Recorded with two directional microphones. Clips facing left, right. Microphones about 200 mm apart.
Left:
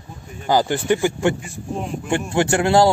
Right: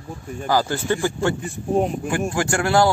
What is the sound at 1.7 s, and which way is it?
Speech, 45° right (ahead or behind).